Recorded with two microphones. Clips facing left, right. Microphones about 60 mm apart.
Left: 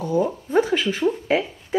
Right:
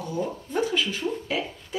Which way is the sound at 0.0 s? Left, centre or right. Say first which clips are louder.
Left 8 dB; left.